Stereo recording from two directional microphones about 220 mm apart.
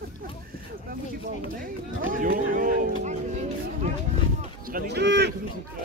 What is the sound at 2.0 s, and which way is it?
Speech, 40° right (ahead or behind).